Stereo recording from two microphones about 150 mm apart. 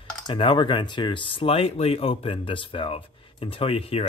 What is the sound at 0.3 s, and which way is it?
Speech, 35° left (ahead or behind).